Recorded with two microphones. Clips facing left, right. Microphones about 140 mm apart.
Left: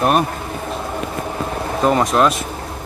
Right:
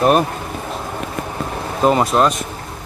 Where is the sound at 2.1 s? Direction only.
25° right (ahead or behind).